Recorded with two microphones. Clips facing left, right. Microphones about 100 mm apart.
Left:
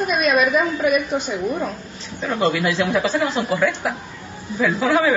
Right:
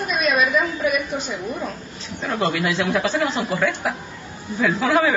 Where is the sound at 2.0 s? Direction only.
Centre (ahead or behind).